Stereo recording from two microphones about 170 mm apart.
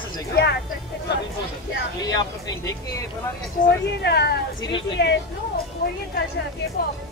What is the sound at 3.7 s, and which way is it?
A woman's voice, 80° left.